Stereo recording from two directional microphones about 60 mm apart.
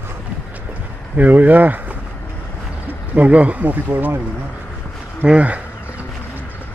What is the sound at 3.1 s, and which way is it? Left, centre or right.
Speech, right.